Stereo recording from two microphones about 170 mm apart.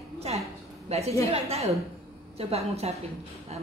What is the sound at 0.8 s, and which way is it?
A woman's voice, 40° right (ahead or behind).